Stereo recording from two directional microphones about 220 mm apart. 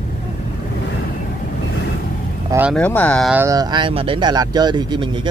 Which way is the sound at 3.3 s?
10° right (ahead or behind).